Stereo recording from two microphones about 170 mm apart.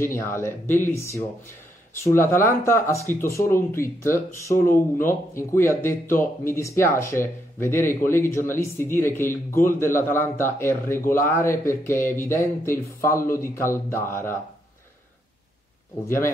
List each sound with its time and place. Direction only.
0.0 s speech: 15° left (ahead or behind)